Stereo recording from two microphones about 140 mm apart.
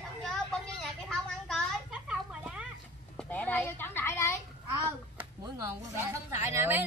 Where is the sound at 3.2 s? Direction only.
10° left (ahead or behind).